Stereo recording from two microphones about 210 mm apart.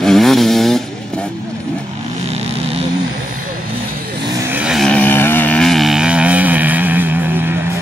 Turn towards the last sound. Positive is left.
turn(degrees=-10)  # may be behind; listen again after turning